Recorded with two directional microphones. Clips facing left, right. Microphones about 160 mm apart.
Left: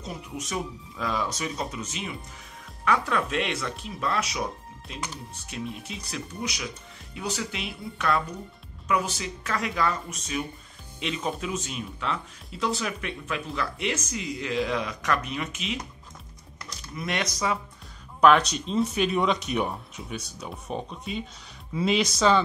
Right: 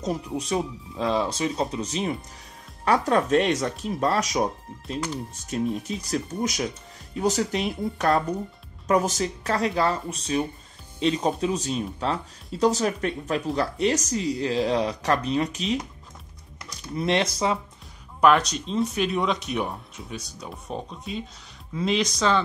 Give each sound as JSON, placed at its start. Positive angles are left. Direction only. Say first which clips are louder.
{"t": 0.0, "sound": "speech", "louder": "right 8 dB", "side_deg": -40}
{"t": 5.5, "sound": "speech", "louder": "right 9 dB", "side_deg": -40}
{"t": 16.9, "sound": "speech", "louder": "right 7 dB", "side_deg": -30}
{"t": 18.2, "sound": "speech", "louder": "even", "side_deg": 0}